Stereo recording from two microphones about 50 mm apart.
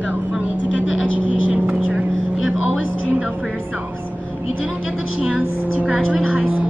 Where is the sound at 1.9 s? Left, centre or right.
Centre.